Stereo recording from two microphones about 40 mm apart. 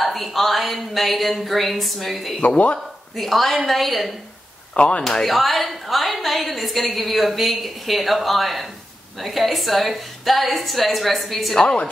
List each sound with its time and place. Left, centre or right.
0.0 s a woman's voice: centre
2.4 s speech: left
3.2 s a woman's voice: centre
4.7 s speech: left
5.0 s a woman's voice: centre